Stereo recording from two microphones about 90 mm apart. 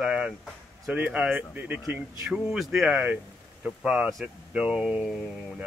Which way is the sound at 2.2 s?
5° right (ahead or behind).